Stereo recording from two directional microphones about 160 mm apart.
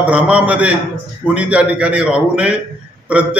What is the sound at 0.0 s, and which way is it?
A man's voice, 10° right (ahead or behind).